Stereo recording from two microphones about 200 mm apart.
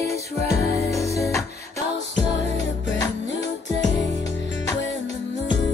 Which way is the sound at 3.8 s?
65° left (ahead or behind).